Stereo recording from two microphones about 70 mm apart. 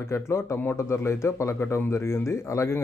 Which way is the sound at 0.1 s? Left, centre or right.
Left.